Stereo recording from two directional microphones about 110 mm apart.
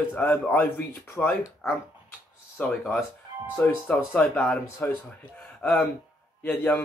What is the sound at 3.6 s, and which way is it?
Speech, 15° left (ahead or behind).